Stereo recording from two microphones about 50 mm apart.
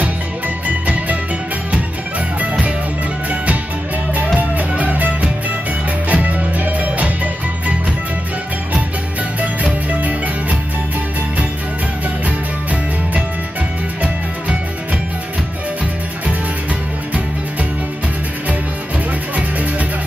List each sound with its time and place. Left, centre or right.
1.7 s music: right
4.4 s music: right
9.4 s music: right
19.3 s music: right